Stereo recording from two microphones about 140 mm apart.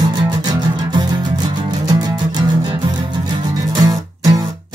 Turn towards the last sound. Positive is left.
turn(degrees=-25)  # may be behind; listen again after turning